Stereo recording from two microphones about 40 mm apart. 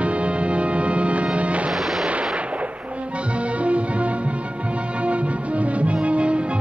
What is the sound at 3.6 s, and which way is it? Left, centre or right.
Music, right.